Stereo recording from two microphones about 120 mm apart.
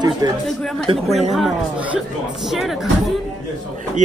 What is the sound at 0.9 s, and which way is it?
Speech, 60° right (ahead or behind).